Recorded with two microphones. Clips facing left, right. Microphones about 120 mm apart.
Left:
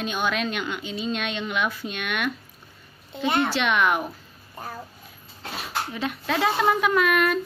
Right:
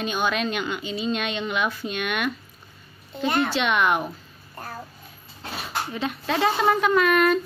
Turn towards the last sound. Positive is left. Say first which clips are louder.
# right 2 dB
turn(degrees=0)  # may be behind; listen again after turning